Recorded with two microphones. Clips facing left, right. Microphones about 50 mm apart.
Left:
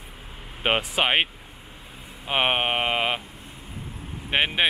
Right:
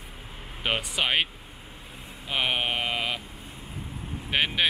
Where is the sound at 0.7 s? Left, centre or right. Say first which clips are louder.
Left 4 dB; left.